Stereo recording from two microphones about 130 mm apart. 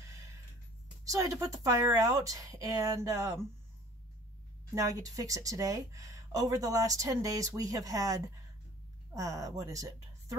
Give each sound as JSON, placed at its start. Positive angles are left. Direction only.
{"t": 1.0, "sound": "speech", "side_deg": -25}
{"t": 4.7, "sound": "a woman's voice", "side_deg": -25}